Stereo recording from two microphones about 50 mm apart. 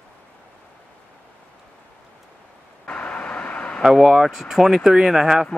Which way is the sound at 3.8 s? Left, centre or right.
Centre.